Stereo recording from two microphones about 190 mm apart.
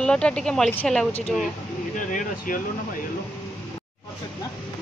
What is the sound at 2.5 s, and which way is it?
Speech, 45° left (ahead or behind).